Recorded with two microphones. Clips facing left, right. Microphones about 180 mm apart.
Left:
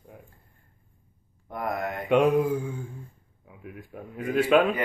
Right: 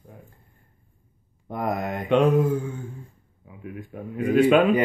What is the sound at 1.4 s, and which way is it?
Speech, 20° right (ahead or behind).